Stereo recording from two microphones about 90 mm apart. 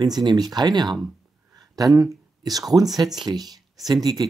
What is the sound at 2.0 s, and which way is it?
Speech, 45° right (ahead or behind).